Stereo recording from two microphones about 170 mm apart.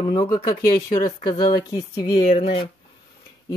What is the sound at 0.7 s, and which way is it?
Speech, 20° left (ahead or behind).